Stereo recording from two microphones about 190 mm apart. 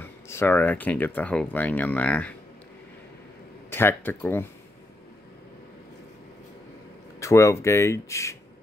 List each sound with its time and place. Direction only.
0.0 s speech: 10° left (ahead or behind)
3.7 s speech: 10° left (ahead or behind)
7.2 s speech: 15° left (ahead or behind)